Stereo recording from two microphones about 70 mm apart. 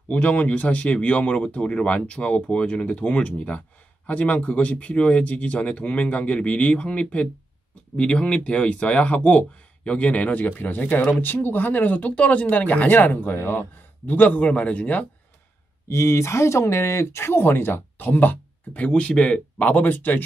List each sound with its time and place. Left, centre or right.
0.1 s speech: centre
15.9 s speech: left